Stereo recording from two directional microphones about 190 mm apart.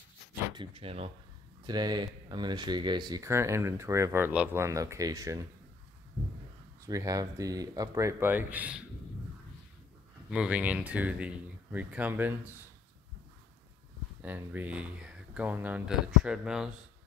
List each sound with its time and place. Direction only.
0.6 s speech: 30° right (ahead or behind)
6.9 s speech: 15° right (ahead or behind)
10.3 s speech: 5° right (ahead or behind)
14.2 s speech: 10° right (ahead or behind)